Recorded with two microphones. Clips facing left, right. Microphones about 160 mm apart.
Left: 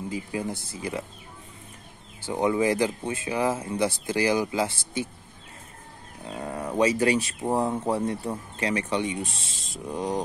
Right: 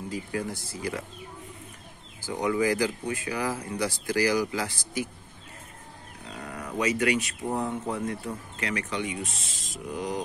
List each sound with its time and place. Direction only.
0.1 s speech: 20° left (ahead or behind)
2.1 s speech: 25° left (ahead or behind)
6.2 s a sound: 30° left (ahead or behind)
7.5 s speech: 35° left (ahead or behind)